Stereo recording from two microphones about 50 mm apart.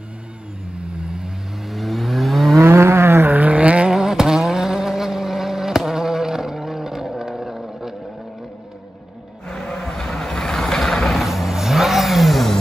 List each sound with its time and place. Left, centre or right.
0.7 s vehicle: centre
1.7 s vehicle: centre
2.5 s a sound: right
3.3 s vehicle: right
3.9 s vehicle: centre
9.5 s vehicle: centre